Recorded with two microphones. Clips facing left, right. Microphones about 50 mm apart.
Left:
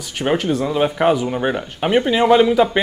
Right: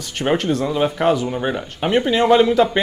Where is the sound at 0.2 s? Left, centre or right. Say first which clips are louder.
Even; centre.